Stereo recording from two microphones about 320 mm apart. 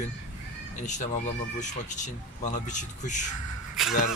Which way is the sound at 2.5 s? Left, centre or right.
Left.